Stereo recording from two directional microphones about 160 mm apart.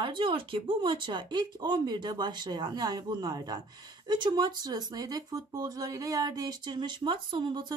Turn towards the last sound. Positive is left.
turn(degrees=-30)  # may be behind; listen again after turning